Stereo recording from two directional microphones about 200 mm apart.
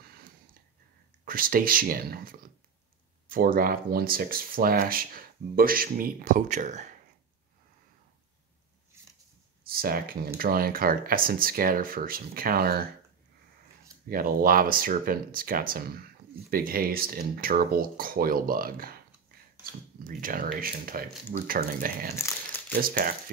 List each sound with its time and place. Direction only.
0.0 s a sound: 50° right (ahead or behind)
1.2 s speech: 45° right (ahead or behind)
8.9 s a sound: 10° right (ahead or behind)
9.7 s speech: 50° right (ahead or behind)
14.0 s speech: 45° right (ahead or behind)
20.0 s speech: 45° right (ahead or behind)
22.1 s crumpling: 15° left (ahead or behind)
22.8 s speech: 45° right (ahead or behind)